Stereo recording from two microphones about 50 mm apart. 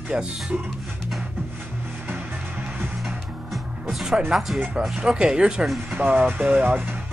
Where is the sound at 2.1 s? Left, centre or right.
Right.